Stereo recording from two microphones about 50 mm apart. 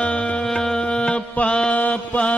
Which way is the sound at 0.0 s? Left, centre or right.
Left.